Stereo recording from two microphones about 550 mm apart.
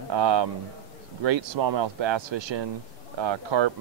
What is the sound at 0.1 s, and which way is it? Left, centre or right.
Speech, right.